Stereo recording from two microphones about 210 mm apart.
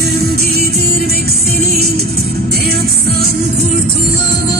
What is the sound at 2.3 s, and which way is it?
Music, 50° right (ahead or behind).